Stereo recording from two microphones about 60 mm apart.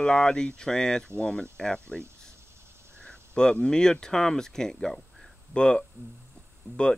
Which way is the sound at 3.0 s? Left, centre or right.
Centre.